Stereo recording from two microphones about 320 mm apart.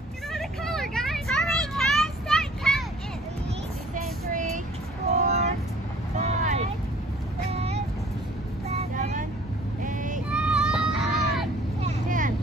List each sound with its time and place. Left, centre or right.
0.3 s vehicle: centre
3.9 s child singing: right
5.2 s vehicle: right
10.3 s vehicle: centre
11.8 s vehicle: right